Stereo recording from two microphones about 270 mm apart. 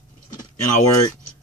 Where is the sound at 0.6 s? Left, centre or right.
Left.